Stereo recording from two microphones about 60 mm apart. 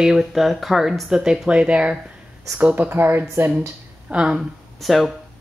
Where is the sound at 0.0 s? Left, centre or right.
Centre; by 3.7 s right.